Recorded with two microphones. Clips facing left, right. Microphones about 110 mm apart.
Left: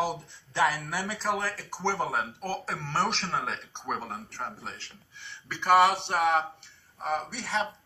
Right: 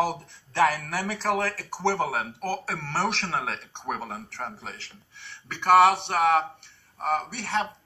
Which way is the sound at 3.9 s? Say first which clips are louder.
Right 1 dB; centre (ahead or behind).